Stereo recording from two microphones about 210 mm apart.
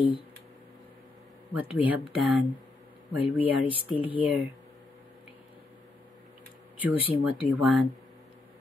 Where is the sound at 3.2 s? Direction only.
25° left (ahead or behind).